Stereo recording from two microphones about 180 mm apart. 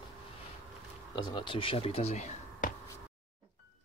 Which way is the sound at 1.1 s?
25° left (ahead or behind).